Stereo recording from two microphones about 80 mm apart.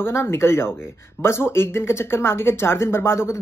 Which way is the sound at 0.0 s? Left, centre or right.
Left.